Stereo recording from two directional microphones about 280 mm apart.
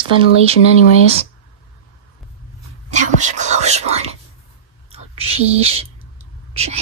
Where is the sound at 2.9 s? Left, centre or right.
Right.